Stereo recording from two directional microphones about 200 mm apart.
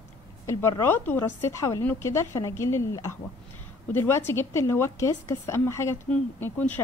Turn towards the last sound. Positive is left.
turn(degrees=10)  # may be behind; listen again after turning